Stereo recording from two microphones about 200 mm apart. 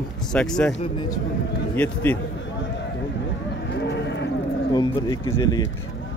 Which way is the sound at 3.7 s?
60° left (ahead or behind).